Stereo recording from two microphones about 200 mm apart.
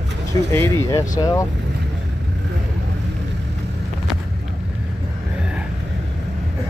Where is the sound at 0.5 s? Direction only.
15° left (ahead or behind).